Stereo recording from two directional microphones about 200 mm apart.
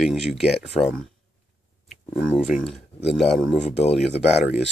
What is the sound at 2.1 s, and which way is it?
Speech, 5° right (ahead or behind).